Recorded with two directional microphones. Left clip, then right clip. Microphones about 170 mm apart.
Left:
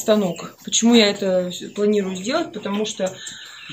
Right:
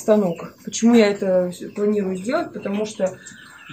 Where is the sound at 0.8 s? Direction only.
15° right (ahead or behind).